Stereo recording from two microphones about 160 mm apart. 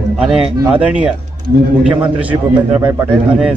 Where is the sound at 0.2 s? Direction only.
5° right (ahead or behind).